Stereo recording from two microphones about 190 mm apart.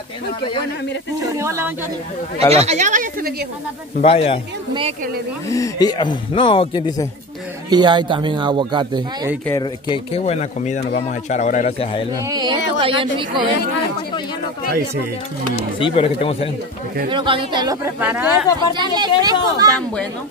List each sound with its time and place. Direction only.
1.2 s speech: 15° right (ahead or behind)
2.5 s speech: 35° right (ahead or behind); by 3.4 s 50° right (ahead or behind)
4.0 s speech: 30° left (ahead or behind)
5.5 s speech: 20° left (ahead or behind)
7.7 s speech: 25° right (ahead or behind)
9.5 s speech: 25° left (ahead or behind)
12.3 s speech: 25° right (ahead or behind)
15.8 s speech: 30° left (ahead or behind)
17.1 s speech: 25° right (ahead or behind)
18.0 s speech: 10° right (ahead or behind)
18.8 s speech: 20° right (ahead or behind)